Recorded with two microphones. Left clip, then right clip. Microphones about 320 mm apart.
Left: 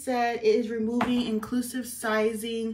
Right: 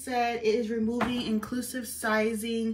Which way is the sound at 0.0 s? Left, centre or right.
Centre.